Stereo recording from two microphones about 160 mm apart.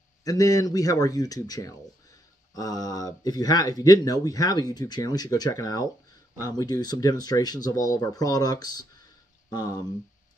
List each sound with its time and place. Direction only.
0.2 s speech: 20° left (ahead or behind)